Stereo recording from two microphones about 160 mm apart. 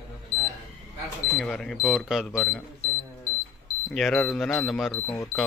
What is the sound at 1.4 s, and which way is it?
Speech, centre (ahead or behind).